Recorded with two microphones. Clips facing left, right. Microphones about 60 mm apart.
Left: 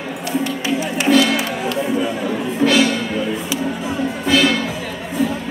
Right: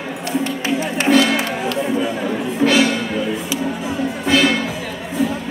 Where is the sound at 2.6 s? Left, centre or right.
Right.